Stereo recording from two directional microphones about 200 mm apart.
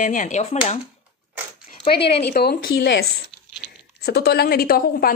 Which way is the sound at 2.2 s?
50° left (ahead or behind).